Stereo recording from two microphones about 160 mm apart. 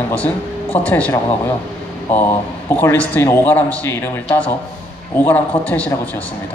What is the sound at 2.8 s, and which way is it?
A man's voice, 10° left (ahead or behind).